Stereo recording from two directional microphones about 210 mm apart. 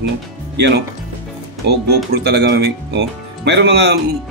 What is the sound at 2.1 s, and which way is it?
Speech, 55° right (ahead or behind).